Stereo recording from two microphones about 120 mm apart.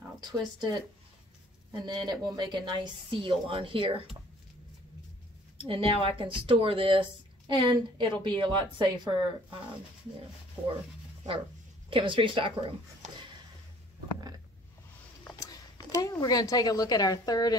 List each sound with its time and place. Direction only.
0.2 s speech: 35° right (ahead or behind)
5.6 s speech: 50° right (ahead or behind)
11.9 s speech: 45° right (ahead or behind)
15.3 s speech: 30° left (ahead or behind)